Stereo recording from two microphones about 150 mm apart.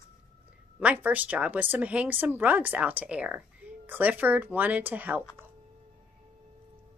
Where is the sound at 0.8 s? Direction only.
10° right (ahead or behind).